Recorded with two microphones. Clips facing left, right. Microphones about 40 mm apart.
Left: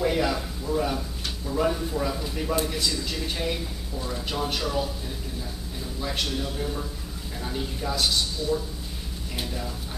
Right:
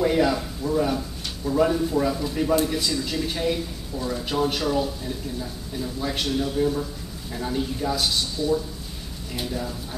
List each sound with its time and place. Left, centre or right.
0.0 s a man's voice: centre
5.9 s a man's voice: centre
9.3 s a man's voice: centre